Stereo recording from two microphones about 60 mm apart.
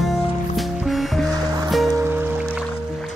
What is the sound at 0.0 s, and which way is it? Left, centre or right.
Music, centre.